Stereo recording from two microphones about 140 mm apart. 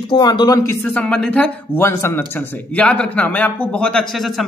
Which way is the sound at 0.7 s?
10° left (ahead or behind).